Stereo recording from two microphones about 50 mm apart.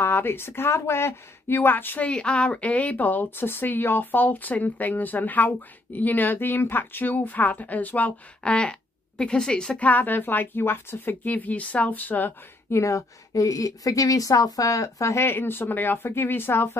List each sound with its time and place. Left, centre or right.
0.0 s speech: left
2.0 s speech: left
8.5 s speech: left
9.8 s speech: left
11.2 s speech: left
12.7 s speech: left
15.2 s speech: left